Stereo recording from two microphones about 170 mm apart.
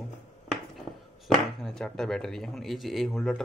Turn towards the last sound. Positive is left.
turn(degrees=0)  # may be behind; listen again after turning